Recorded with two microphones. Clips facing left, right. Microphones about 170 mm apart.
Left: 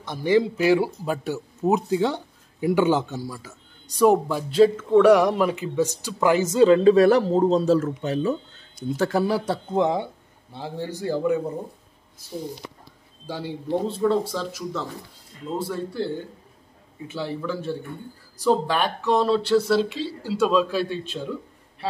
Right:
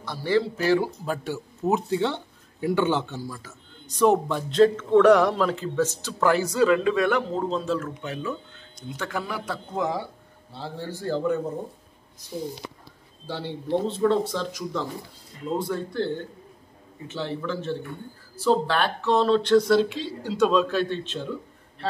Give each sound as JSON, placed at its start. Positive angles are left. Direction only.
{"t": 0.0, "sound": "a man's voice", "side_deg": 20}
{"t": 10.5, "sound": "a man's voice", "side_deg": 15}
{"t": 13.3, "sound": "a man's voice", "side_deg": 10}
{"t": 17.1, "sound": "a man's voice", "side_deg": 10}